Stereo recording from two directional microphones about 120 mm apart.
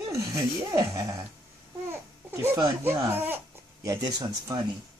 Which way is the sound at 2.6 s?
20° right (ahead or behind).